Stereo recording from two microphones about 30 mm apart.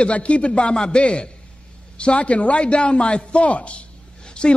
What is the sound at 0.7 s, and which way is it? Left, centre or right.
A man's voice, left.